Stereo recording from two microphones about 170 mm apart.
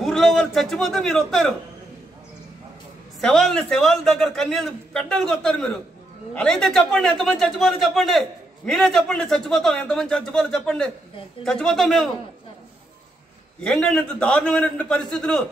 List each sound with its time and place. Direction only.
0.0 s a man's voice: centre (ahead or behind)
3.2 s a man's voice: 5° left (ahead or behind)
13.7 s a man's voice: 5° left (ahead or behind)